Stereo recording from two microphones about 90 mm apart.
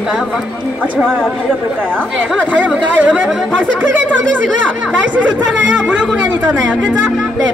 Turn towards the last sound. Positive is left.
turn(degrees=-15)  # may be behind; listen again after turning